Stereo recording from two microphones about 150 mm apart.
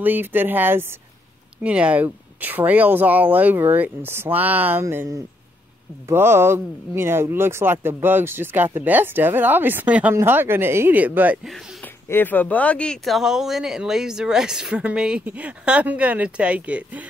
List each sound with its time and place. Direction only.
0.0 s speech: 15° right (ahead or behind)
11.8 s speech: 15° left (ahead or behind); by 17.1 s 10° right (ahead or behind)